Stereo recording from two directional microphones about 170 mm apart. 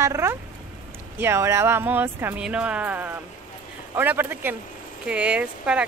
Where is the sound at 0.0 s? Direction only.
15° right (ahead or behind).